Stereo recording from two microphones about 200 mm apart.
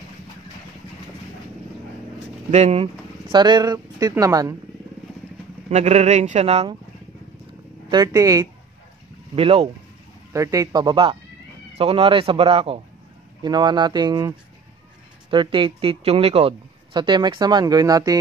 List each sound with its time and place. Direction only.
2.5 s speech: 30° right (ahead or behind)
5.7 s speech: 35° right (ahead or behind)
7.9 s speech: 15° right (ahead or behind)
9.3 s speech: 30° right (ahead or behind)
10.3 s speech: 15° right (ahead or behind)